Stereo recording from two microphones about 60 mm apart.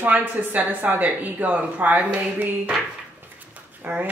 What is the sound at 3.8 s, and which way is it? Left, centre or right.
Speech, right.